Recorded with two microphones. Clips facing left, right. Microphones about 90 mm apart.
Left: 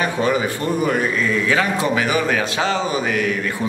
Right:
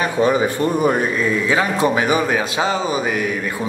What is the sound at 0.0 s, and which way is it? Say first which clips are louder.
A man's voice: right 3 dB; 25° right (ahead or behind).